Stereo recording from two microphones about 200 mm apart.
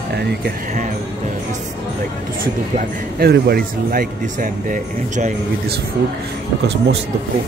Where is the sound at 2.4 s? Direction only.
50° right (ahead or behind).